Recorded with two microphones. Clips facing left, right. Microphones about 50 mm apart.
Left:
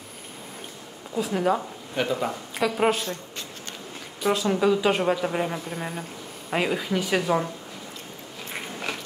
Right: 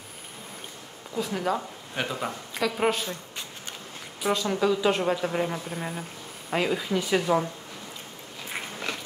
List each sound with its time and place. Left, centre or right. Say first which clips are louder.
1.1 s a man's voice: left 4 dB; centre
3.0 s speech: left 2 dB; centre
4.2 s speech: left 3 dB; centre; by 7.2 s left